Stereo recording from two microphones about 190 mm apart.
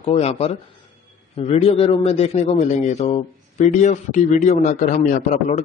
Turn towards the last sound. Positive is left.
turn(degrees=45)  # may be behind; listen again after turning